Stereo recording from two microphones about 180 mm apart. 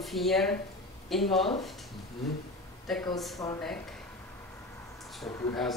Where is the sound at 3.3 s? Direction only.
20° left (ahead or behind).